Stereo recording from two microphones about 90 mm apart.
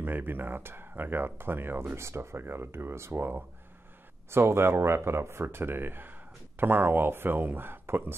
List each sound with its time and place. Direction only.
0.0 s speech: 20° right (ahead or behind)